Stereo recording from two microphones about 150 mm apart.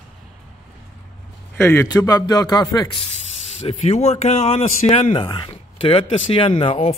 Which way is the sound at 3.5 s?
40° left (ahead or behind).